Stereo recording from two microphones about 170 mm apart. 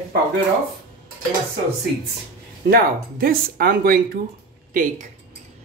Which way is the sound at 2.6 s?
60° right (ahead or behind).